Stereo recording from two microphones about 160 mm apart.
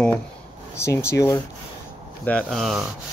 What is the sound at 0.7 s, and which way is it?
Speech, 15° left (ahead or behind).